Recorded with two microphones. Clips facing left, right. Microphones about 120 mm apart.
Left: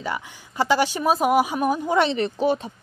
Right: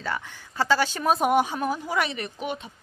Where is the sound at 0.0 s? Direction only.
15° left (ahead or behind).